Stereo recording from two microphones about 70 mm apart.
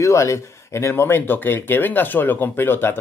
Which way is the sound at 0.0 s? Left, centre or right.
Left.